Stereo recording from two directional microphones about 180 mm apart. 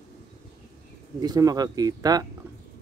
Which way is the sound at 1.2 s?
20° right (ahead or behind).